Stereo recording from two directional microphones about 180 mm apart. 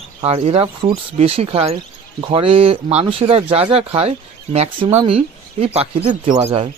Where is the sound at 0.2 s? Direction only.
30° right (ahead or behind).